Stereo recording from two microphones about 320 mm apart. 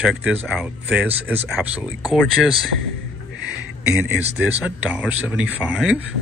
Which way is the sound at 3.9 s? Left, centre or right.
Centre.